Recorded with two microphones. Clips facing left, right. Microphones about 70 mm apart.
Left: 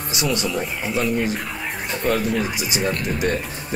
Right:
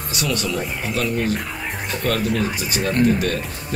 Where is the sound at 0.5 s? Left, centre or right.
Centre.